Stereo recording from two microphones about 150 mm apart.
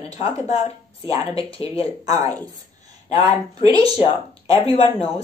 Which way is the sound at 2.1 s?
25° right (ahead or behind).